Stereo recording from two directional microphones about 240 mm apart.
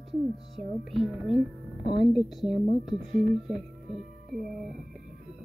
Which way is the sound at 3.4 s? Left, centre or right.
Centre.